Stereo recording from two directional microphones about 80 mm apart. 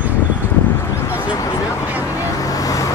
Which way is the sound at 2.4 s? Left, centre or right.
Left.